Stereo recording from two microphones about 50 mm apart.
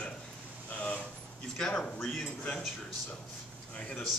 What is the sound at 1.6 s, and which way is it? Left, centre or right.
Speech, centre.